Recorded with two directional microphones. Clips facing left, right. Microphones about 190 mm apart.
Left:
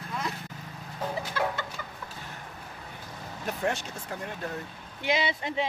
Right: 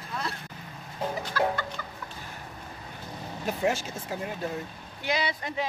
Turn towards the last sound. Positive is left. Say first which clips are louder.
# left 1 dB
turn(degrees=25)  # may be behind; listen again after turning